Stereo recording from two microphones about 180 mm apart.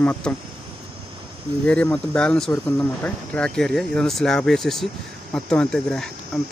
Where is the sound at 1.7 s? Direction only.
5° left (ahead or behind).